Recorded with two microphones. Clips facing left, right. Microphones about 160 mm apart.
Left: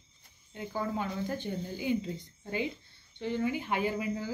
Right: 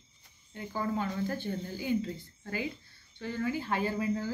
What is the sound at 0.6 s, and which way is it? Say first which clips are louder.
Speech: right 1 dB; 15° left (ahead or behind).